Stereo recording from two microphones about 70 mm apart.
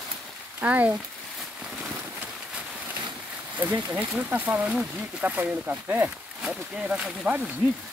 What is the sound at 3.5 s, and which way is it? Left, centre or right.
Speech, right.